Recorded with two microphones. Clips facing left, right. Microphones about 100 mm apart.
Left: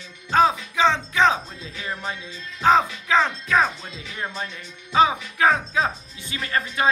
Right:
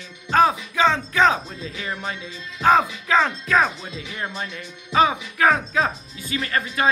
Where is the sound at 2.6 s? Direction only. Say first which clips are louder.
Right 1 dB; 15° left (ahead or behind).